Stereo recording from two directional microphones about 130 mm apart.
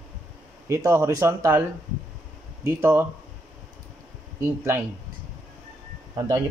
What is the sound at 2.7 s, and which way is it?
Speech, 20° right (ahead or behind).